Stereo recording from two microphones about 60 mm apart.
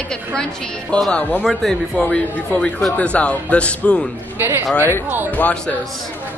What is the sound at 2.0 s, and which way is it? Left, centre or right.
A woman's voice, centre.